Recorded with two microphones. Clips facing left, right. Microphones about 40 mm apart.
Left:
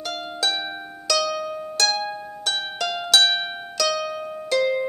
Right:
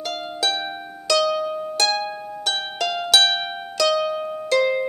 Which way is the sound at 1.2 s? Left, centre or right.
Centre.